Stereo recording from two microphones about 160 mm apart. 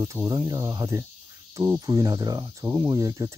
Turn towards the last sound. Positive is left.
turn(degrees=-20)  # may be behind; listen again after turning